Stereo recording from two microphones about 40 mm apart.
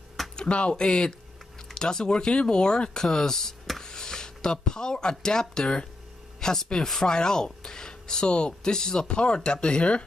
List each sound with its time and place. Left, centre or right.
0.4 s speech: left; by 3.8 s centre
3.8 s speech: centre